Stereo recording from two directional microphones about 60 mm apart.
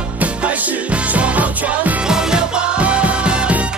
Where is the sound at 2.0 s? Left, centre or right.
Centre.